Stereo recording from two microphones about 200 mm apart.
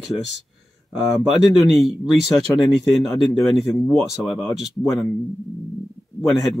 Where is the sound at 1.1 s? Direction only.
Centre (ahead or behind).